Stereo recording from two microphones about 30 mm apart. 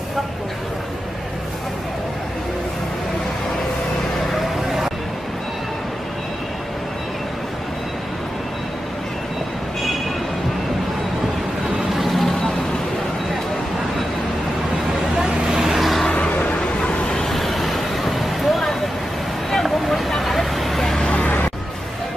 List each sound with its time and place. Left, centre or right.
4.3 s vehicle: centre
11.9 s vehicle: centre
15.4 s vehicle: centre
16.8 s vehicle: left
17.3 s vehicle: centre